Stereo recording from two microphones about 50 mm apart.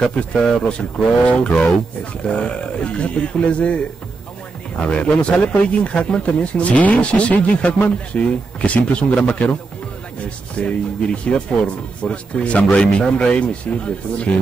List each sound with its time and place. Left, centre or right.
0.0 s speech: left
4.8 s speech: left